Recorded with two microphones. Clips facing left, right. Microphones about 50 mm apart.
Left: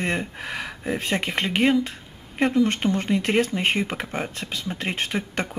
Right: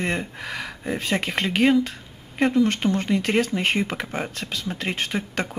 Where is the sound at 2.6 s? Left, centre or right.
Centre.